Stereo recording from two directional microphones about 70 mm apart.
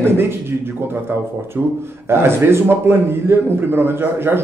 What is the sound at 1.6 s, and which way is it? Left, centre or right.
Speech, right.